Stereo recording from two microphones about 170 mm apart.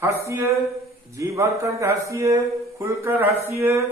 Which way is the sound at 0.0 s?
15° right (ahead or behind).